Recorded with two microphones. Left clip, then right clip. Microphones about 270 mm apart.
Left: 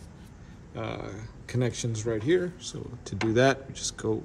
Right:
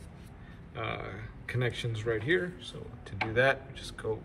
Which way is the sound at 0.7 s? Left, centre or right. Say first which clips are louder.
Left 1 dB; left.